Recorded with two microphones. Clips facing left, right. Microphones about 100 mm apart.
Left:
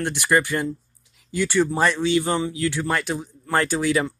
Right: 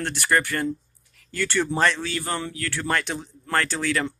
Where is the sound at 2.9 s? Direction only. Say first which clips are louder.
Left 1 dB; 5° left (ahead or behind).